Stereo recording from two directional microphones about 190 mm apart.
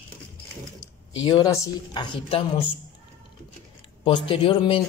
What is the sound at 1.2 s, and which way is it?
Speech, 20° left (ahead or behind).